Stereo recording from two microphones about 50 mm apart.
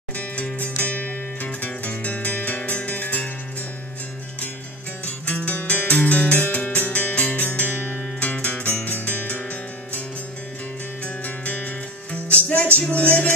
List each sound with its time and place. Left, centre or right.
0.1 s music: left
5.0 s music: left
11.2 s music: left